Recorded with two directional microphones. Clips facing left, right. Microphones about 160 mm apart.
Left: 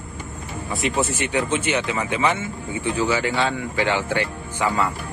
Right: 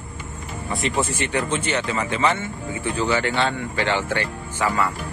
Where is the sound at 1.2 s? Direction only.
15° left (ahead or behind).